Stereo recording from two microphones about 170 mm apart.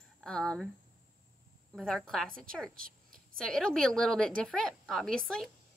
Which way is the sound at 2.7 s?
55° right (ahead or behind).